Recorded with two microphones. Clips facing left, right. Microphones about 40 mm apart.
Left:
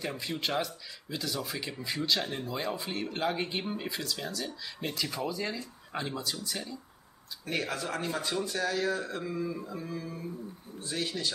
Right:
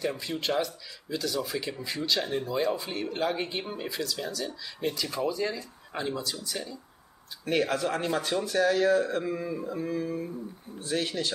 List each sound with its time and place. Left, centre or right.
0.0 s speech: centre
4.0 s speech: centre
7.4 s speech: right